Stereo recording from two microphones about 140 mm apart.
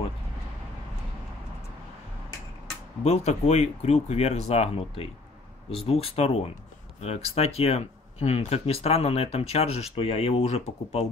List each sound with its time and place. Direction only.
3.0 s speech: 50° left (ahead or behind)